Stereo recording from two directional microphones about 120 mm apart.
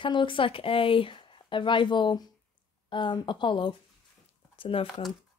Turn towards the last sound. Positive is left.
turn(degrees=50)  # may be behind; listen again after turning